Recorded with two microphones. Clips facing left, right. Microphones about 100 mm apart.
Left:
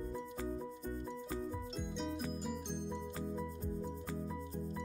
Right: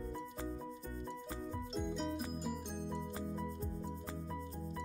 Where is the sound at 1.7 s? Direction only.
Centre (ahead or behind).